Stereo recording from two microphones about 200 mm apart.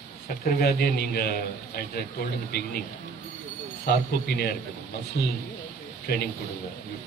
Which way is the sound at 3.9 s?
50° left (ahead or behind).